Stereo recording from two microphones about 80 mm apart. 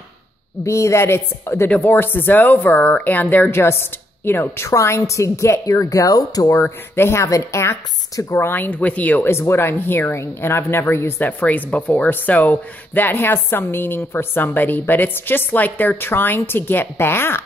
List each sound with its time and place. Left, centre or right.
0.7 s a woman's voice: left
6.6 s a woman's voice: left
8.5 s speech: left
9.3 s speech: left